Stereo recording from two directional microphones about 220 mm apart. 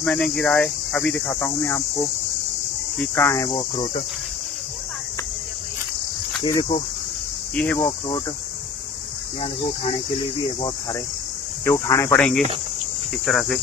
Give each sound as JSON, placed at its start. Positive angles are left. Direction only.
{"t": 0.0, "sound": "speech", "side_deg": 5}
{"t": 3.2, "sound": "speech", "side_deg": 15}
{"t": 3.4, "sound": "speech", "side_deg": 25}
{"t": 6.4, "sound": "speech", "side_deg": 20}
{"t": 7.5, "sound": "speech", "side_deg": 5}
{"t": 9.4, "sound": "speech", "side_deg": 25}
{"t": 11.6, "sound": "speech", "side_deg": 15}